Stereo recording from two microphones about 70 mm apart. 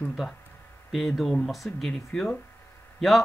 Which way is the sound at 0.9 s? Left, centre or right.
Centre.